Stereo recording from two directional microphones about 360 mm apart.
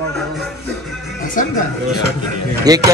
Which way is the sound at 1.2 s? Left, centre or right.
Left.